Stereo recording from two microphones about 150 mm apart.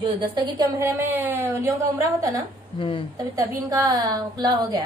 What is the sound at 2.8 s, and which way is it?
Speech, 35° left (ahead or behind).